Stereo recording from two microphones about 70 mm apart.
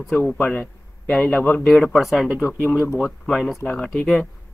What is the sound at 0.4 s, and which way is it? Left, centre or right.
A man's voice, centre.